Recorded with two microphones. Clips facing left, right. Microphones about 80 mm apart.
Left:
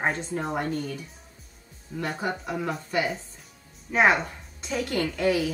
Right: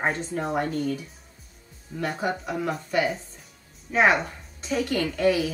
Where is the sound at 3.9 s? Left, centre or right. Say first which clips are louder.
Right 1 dB; centre.